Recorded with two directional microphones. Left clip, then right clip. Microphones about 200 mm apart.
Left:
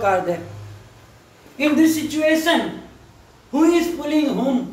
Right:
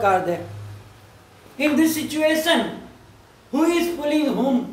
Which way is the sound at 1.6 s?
15° right (ahead or behind).